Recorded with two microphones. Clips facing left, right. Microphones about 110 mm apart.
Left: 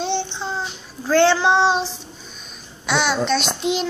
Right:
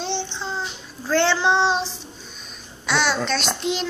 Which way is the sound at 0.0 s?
5° left (ahead or behind).